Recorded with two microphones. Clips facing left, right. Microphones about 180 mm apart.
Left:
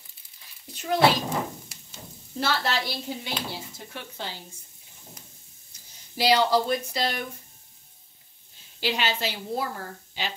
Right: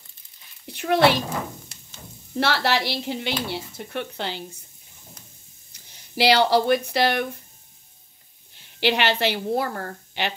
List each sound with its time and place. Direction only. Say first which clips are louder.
0.7 s speech: right 3 dB; 65° right (ahead or behind)
2.3 s speech: right 5 dB; 70° right (ahead or behind)
5.7 s speech: right 3 dB; 75° right (ahead or behind)
8.5 s a woman's voice: right 6 dB; 70° right (ahead or behind)